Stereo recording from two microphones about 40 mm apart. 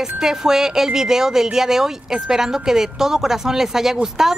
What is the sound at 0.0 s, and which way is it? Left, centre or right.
Speech, centre.